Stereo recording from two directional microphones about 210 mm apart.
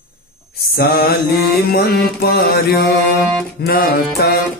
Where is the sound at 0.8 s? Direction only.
45° left (ahead or behind).